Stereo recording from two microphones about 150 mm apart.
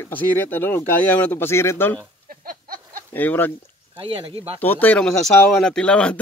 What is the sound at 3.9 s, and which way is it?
Speech, 35° right (ahead or behind).